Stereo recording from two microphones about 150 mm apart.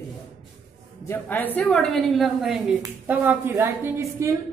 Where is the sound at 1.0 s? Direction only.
15° left (ahead or behind).